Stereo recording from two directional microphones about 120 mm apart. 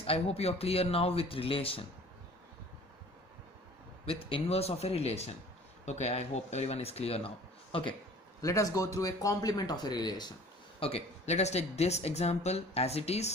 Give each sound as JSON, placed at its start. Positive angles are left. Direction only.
{"t": 0.0, "sound": "speech", "side_deg": 55}
{"t": 4.0, "sound": "speech", "side_deg": 55}
{"t": 8.4, "sound": "speech", "side_deg": 25}
{"t": 10.8, "sound": "speech", "side_deg": 50}